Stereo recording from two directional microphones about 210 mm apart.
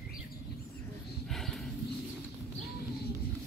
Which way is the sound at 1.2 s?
Centre (ahead or behind).